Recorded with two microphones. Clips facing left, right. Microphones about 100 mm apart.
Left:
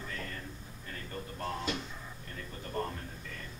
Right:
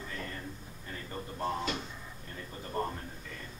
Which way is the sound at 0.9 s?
15° right (ahead or behind).